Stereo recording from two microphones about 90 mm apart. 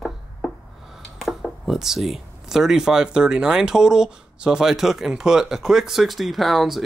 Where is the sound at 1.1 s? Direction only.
5° left (ahead or behind).